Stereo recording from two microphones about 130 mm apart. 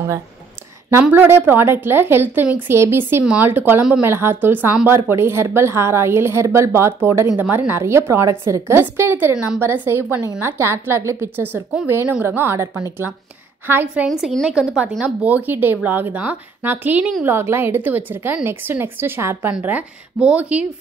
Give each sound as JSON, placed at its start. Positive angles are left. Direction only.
{"t": 0.8, "sound": "a woman's voice", "side_deg": -15}
{"t": 14.2, "sound": "a woman's voice", "side_deg": -5}